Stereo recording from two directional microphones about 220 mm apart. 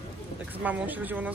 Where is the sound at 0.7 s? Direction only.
5° right (ahead or behind).